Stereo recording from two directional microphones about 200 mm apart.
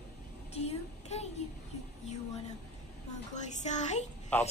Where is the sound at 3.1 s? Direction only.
35° left (ahead or behind).